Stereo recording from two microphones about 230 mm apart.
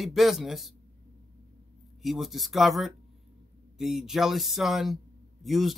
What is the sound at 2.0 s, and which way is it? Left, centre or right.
Speech, centre.